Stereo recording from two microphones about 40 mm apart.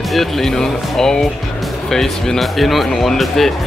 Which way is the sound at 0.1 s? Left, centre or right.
Centre.